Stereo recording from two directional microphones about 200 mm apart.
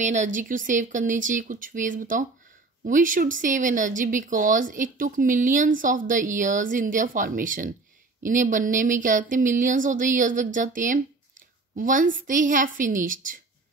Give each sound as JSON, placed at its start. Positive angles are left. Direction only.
{"t": 0.0, "sound": "a woman's voice", "side_deg": -35}